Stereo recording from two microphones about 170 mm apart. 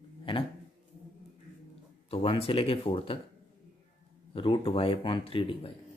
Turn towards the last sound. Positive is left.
turn(degrees=30)  # may be behind; listen again after turning